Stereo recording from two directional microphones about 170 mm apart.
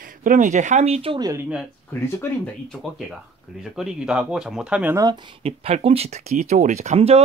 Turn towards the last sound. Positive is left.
turn(degrees=-40)  # may be behind; listen again after turning